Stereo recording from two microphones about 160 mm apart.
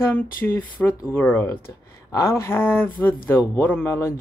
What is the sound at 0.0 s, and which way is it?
Speech, 10° left (ahead or behind).